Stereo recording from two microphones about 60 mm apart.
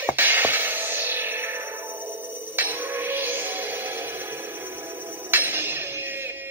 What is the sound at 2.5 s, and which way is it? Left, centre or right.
Music, right.